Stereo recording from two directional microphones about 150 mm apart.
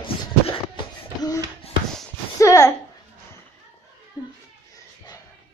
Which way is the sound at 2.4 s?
20° left (ahead or behind).